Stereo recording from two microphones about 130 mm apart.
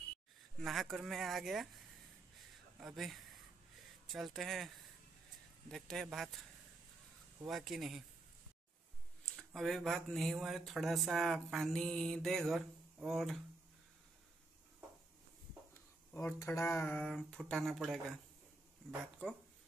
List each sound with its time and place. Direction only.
0.6 s speech: centre (ahead or behind)
7.4 s speech: centre (ahead or behind)
9.2 s speech: 5° left (ahead or behind)
16.1 s speech: 15° left (ahead or behind)
16.8 s speech: 5° left (ahead or behind)